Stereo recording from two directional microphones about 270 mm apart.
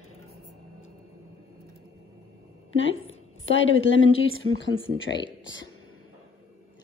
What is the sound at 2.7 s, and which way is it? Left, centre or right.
A woman's voice, left.